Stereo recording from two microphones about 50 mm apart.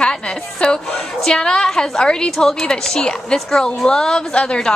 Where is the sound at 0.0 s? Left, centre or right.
Centre.